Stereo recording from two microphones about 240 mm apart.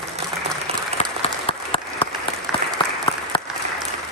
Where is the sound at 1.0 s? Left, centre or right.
Left.